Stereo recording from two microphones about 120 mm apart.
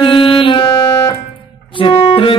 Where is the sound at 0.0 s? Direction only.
45° left (ahead or behind).